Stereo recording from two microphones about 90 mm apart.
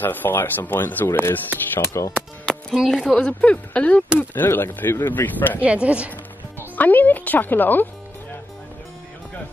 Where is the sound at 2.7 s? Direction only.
Centre (ahead or behind); by 5.6 s 20° left (ahead or behind).